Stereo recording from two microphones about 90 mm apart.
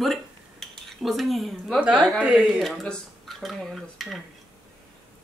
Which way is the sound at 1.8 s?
15° right (ahead or behind).